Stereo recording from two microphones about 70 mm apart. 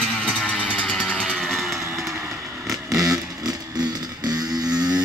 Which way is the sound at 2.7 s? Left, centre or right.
Right.